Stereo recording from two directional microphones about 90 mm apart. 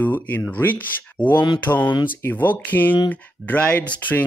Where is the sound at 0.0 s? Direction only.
20° left (ahead or behind).